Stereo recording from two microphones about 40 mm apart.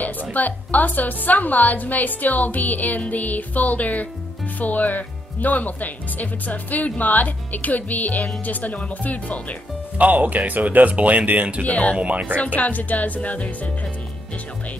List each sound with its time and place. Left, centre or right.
0.0 s a woman's voice: left
9.9 s speech: right
11.6 s speech: left
12.0 s speech: right
12.5 s speech: left